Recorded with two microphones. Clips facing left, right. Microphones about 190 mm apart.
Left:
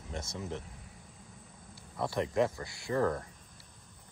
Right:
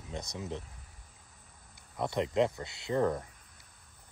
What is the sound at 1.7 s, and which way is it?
Speech, 20° right (ahead or behind).